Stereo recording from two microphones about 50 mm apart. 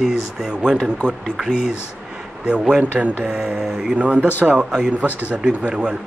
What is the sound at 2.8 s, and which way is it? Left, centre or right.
Speech, right.